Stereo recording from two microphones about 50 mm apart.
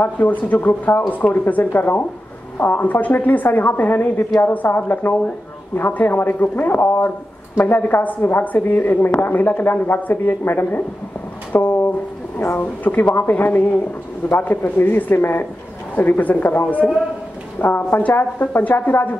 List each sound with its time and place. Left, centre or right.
0.0 s speech: left
10.4 s speech: left
11.5 s a sound: left
12.5 s speech: left
17.6 s speech: left
18.1 s speech: left
18.6 s speech: left